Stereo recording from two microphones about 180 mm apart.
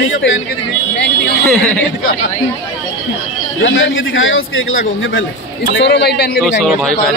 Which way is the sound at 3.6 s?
90° left.